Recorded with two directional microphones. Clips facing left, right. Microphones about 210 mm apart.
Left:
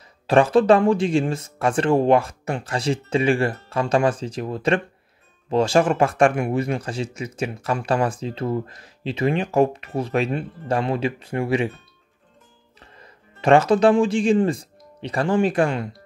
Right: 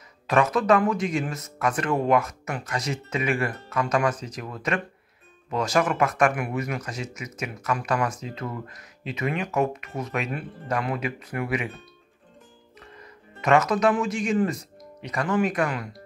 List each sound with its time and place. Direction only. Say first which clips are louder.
0.3 s speech: left 6 dB; 30° left (ahead or behind)
12.8 s speech: right 1 dB; 30° left (ahead or behind)